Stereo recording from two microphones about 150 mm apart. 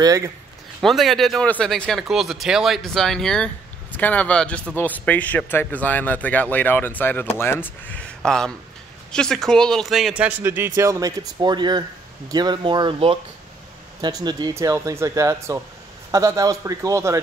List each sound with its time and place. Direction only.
0.0 s speech: 20° right (ahead or behind)
0.8 s a man's voice: centre (ahead or behind); by 17.2 s 20° right (ahead or behind)